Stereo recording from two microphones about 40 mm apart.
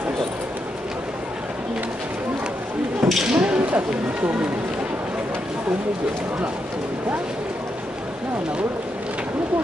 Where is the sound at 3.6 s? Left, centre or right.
Right.